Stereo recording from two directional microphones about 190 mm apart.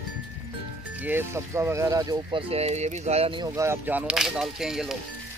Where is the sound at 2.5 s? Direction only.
35° right (ahead or behind).